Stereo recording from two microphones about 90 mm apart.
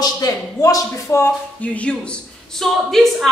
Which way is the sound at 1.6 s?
15° left (ahead or behind).